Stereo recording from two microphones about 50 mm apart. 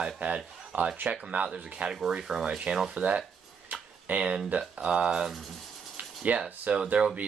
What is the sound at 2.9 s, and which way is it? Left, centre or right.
Speech, right.